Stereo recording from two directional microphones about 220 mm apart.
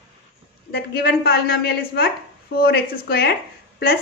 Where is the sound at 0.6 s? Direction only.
50° left (ahead or behind).